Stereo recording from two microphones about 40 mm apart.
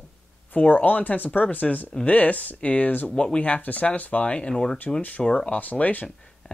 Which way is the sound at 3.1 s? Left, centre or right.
Left.